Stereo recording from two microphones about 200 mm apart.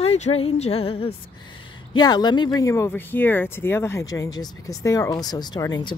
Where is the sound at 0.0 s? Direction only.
30° left (ahead or behind).